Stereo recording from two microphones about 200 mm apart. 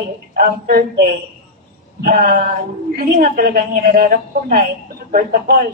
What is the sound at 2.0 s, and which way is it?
A man's voice, 45° right (ahead or behind).